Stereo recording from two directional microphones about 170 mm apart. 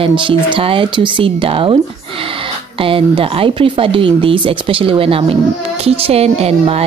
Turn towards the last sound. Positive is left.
turn(degrees=-35)  # may be behind; listen again after turning